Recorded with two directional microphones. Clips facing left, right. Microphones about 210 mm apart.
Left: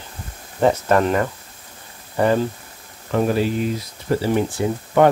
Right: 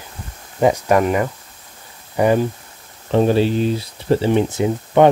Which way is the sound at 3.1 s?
25° right (ahead or behind).